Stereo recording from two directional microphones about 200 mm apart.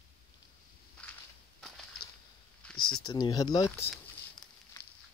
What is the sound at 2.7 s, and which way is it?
Speech, 90° left.